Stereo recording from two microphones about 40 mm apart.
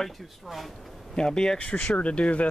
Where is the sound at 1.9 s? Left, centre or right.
Left.